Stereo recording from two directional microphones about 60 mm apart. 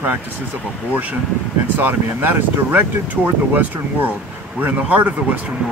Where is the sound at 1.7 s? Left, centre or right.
Right.